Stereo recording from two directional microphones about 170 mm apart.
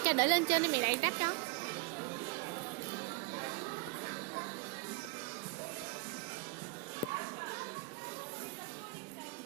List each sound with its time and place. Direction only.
0.1 s a woman's voice: 20° right (ahead or behind)